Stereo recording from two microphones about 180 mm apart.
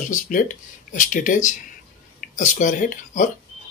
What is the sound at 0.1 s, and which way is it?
Speech, 50° left (ahead or behind).